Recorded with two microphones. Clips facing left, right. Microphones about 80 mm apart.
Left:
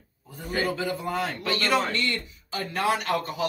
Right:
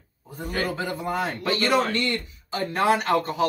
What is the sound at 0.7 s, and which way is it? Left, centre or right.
A man's voice, right.